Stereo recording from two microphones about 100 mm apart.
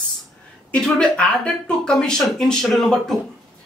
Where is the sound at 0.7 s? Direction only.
10° left (ahead or behind).